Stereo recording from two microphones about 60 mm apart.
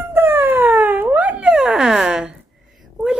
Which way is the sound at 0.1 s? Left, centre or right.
Right.